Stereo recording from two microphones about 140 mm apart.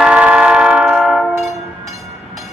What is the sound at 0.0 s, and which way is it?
Train, 10° right (ahead or behind).